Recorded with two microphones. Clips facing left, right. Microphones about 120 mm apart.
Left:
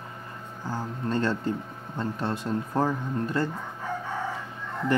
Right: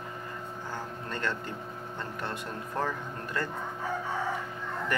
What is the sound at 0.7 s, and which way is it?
Speech, 30° left (ahead or behind).